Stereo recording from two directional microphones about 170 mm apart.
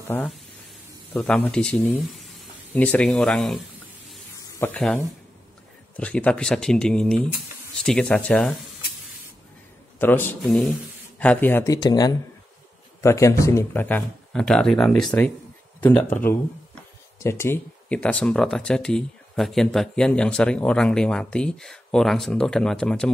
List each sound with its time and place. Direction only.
1.2 s speech: 5° left (ahead or behind)
9.9 s a man's voice: 10° left (ahead or behind)